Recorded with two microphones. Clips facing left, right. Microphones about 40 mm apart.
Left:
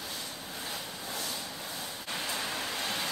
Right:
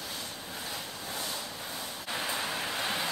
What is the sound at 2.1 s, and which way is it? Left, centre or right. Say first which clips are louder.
Vehicle: right 2 dB; centre.